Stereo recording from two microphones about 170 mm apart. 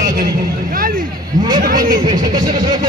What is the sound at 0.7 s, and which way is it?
Vehicle, 55° right (ahead or behind).